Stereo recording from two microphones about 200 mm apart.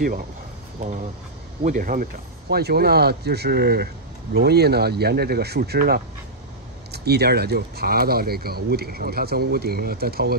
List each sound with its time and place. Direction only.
1.6 s speech: 45° right (ahead or behind)